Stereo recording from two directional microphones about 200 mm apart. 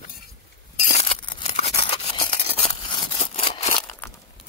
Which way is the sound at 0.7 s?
35° left (ahead or behind).